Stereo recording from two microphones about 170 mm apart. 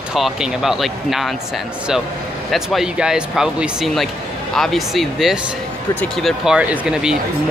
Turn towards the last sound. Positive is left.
turn(degrees=-5)  # may be behind; listen again after turning